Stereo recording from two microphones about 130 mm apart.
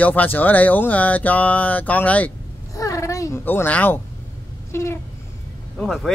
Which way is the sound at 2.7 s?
25° left (ahead or behind).